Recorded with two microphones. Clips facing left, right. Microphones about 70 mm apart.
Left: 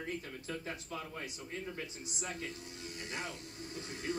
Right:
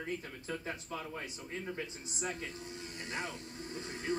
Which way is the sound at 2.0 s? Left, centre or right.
Right.